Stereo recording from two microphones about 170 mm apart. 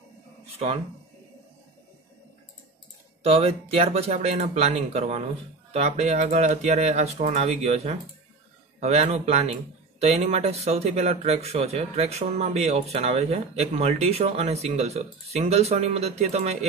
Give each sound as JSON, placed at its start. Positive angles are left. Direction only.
{"t": 3.3, "sound": "speech", "side_deg": -35}